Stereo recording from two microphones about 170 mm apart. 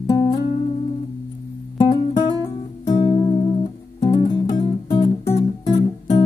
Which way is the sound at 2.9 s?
30° left (ahead or behind).